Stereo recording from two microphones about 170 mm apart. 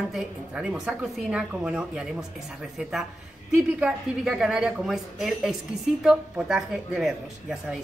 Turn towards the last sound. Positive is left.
turn(degrees=0)  # may be behind; listen again after turning